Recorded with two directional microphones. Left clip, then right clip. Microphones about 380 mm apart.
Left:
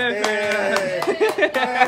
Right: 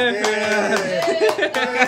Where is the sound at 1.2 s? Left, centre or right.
Centre.